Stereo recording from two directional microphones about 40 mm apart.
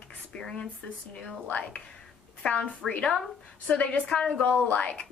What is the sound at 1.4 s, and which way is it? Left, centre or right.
Speech, left.